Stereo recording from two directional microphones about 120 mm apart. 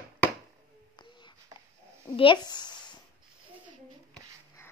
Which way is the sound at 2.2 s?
40° left (ahead or behind).